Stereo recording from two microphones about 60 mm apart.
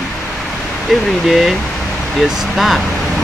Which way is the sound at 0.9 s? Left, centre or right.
Centre.